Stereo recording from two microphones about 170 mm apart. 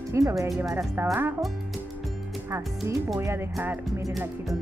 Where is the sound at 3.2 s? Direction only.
15° right (ahead or behind).